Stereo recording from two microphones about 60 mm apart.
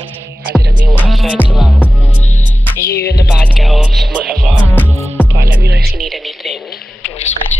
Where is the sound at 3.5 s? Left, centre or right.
Centre.